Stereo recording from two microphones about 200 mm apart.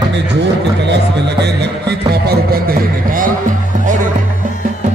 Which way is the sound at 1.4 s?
55° right (ahead or behind).